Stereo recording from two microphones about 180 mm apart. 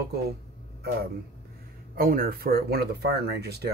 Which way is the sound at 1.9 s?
55° right (ahead or behind).